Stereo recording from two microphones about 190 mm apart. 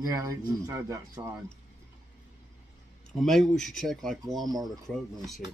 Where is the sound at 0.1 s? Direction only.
20° right (ahead or behind).